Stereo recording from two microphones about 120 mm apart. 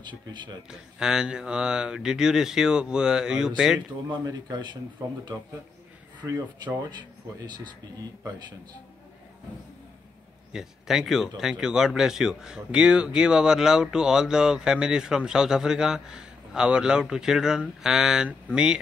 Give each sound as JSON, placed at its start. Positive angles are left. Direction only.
{"t": 0.0, "sound": "a man's voice", "side_deg": -40}
{"t": 0.7, "sound": "speech", "side_deg": -5}
{"t": 4.2, "sound": "a man's voice", "side_deg": -35}
{"t": 6.2, "sound": "a man's voice", "side_deg": -25}
{"t": 10.5, "sound": "speech", "side_deg": -5}